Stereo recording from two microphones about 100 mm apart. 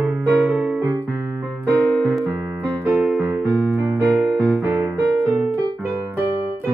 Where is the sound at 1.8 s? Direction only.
15° left (ahead or behind).